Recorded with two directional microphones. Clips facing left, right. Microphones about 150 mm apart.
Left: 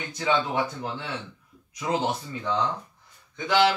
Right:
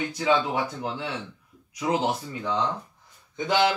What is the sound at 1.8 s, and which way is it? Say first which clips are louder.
Speech: right 1 dB; 10° right (ahead or behind).